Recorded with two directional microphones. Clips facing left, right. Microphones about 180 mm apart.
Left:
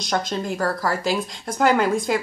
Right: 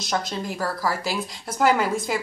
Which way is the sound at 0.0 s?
5° right (ahead or behind).